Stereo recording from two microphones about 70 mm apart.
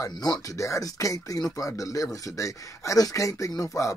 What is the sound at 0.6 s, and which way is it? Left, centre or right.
Speech, left.